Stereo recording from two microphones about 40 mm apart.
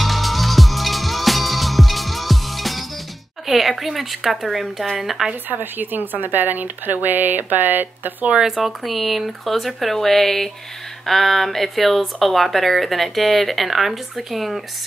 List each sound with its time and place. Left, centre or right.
0.0 s music: centre
3.4 s speech: centre
5.3 s speech: right
8.4 s speech: centre